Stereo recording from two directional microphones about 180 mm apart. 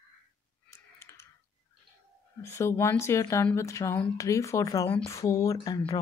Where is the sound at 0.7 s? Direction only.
15° left (ahead or behind).